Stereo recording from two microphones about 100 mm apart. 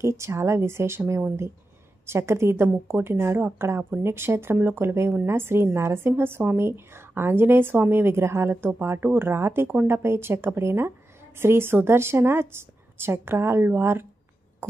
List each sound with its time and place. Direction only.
0.0 s speech: 30° right (ahead or behind)